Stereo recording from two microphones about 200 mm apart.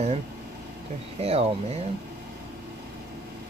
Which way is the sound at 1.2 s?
30° right (ahead or behind).